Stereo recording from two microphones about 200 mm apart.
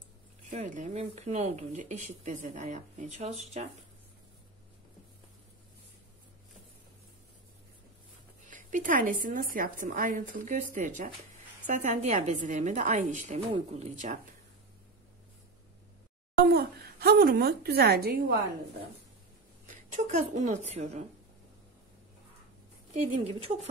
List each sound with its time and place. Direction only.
0.5 s speech: 35° right (ahead or behind)
8.5 s speech: 40° right (ahead or behind)
16.3 s a woman's voice: 50° right (ahead or behind)
19.7 s a woman's voice: 40° right (ahead or behind)
22.9 s speech: 30° right (ahead or behind)